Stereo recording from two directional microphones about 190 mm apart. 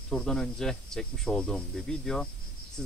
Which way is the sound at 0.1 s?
5° left (ahead or behind).